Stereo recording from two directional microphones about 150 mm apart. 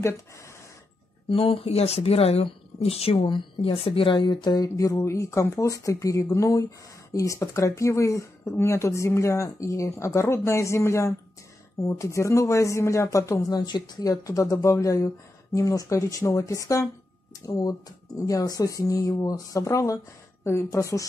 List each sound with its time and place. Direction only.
1.3 s speech: 40° left (ahead or behind); by 21.1 s 20° left (ahead or behind)